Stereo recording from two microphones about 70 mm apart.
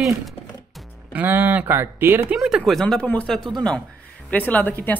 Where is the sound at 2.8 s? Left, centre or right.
Centre.